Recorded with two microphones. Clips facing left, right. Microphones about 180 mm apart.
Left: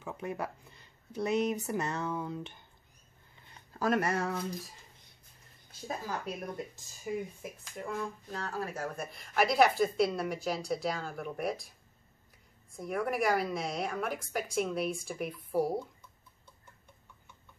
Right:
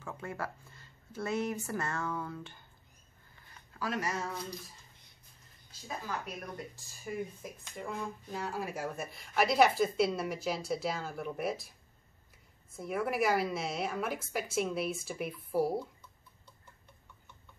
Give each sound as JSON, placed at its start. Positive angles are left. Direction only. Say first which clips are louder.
{"t": 0.0, "sound": "speech", "louder": "left 3 dB", "side_deg": 20}
{"t": 3.4, "sound": "a sound", "louder": "left 4 dB", "side_deg": 30}
{"t": 3.8, "sound": "speech", "louder": "left 6 dB", "side_deg": 55}
{"t": 5.7, "sound": "a woman's voice", "louder": "left 2 dB", "side_deg": 40}
{"t": 6.4, "sound": "speech", "louder": "left 4 dB", "side_deg": 25}
{"t": 7.4, "sound": "speech", "louder": "left 1 dB", "side_deg": 0}
{"t": 8.4, "sound": "speech", "louder": "even", "side_deg": -10}
{"t": 12.7, "sound": "speech", "louder": "even", "side_deg": -5}